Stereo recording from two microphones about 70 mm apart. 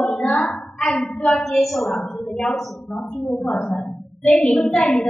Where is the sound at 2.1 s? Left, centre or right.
Centre.